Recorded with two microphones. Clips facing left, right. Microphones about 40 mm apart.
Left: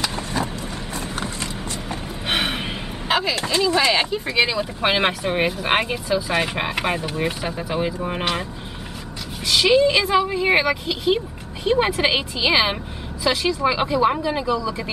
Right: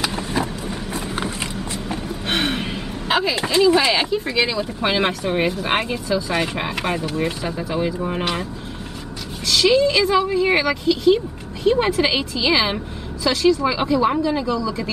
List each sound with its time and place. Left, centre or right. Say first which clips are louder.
0.0 s vehicle: right 2 dB; centre
1.1 s mechanisms: right 3 dB; centre
2.2 s gasp: right 1 dB; centre
3.1 s a sound: right 1 dB; centre
3.4 s speech: right 4 dB; centre
9.5 s speech: even; centre